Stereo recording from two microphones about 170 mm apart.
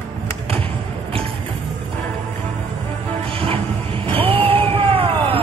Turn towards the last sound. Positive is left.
turn(degrees=-35)  # may be behind; listen again after turning